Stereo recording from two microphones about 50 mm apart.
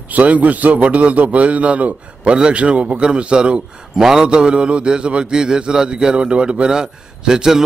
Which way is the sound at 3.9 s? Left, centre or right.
Centre.